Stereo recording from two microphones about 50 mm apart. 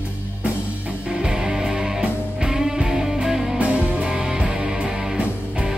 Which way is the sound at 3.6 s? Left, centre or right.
Right.